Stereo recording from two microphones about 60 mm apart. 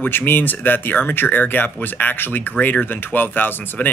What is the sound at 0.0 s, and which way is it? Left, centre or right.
Speech, left.